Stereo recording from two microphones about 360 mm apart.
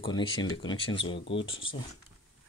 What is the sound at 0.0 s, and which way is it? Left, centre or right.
Speech, centre.